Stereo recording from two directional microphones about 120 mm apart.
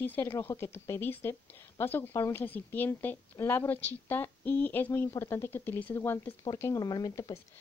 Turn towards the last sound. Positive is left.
turn(degrees=30)  # may be behind; listen again after turning